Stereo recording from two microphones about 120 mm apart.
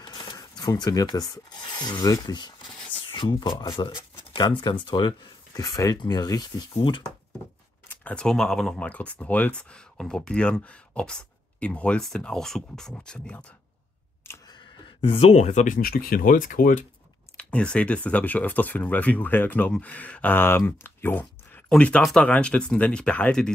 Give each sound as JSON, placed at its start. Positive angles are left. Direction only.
{"t": 0.0, "sound": "rub", "side_deg": 35}
{"t": 3.1, "sound": "speech", "side_deg": 40}
{"t": 6.7, "sound": "speech", "side_deg": 45}
{"t": 7.9, "sound": "speech", "side_deg": 10}
{"t": 14.2, "sound": "camera", "side_deg": 20}
{"t": 15.0, "sound": "speech", "side_deg": 50}
{"t": 17.4, "sound": "speech", "side_deg": 10}